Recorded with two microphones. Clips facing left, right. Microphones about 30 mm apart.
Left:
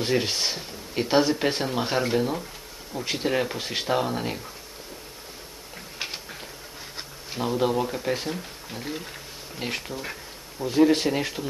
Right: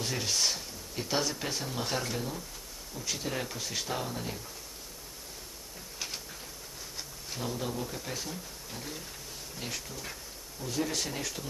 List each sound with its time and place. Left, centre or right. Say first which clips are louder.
0.0 s speech: left 6 dB; left
5.9 s a sound: left 6 dB; left
7.0 s speech: left 8 dB; left